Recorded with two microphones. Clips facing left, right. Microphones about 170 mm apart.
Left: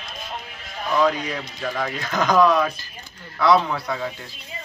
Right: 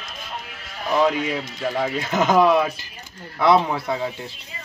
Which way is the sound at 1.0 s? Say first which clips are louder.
Right 1 dB; 25° right (ahead or behind).